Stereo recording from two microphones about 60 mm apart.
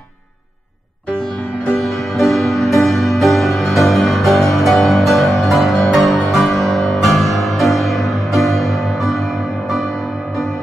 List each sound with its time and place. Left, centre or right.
1.8 s music: centre